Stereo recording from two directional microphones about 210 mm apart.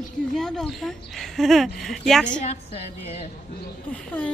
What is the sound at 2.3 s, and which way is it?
A woman's voice, 35° left (ahead or behind).